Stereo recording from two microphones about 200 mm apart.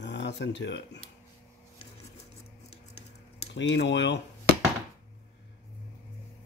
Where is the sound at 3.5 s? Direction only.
60° left (ahead or behind).